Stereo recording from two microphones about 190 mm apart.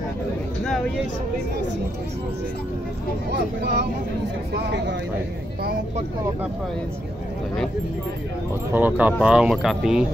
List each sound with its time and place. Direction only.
3.3 s speech: 60° right (ahead or behind)
8.7 s speech: 10° right (ahead or behind)